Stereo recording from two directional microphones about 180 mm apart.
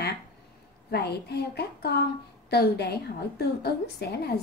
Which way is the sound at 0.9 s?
65° left (ahead or behind).